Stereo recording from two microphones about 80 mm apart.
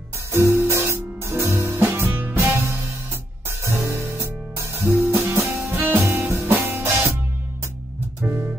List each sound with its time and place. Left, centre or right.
0.3 s music: right
4.9 s music: right
8.2 s music: right